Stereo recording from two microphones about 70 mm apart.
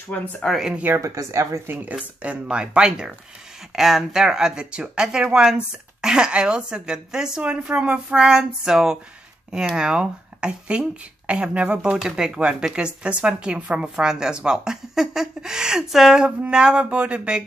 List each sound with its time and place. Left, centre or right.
0.1 s speech: left
0.6 s speech: centre
1.0 s speech: right
1.7 s speech: right